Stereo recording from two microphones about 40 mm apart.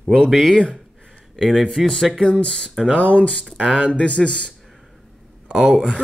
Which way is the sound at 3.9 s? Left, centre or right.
Left.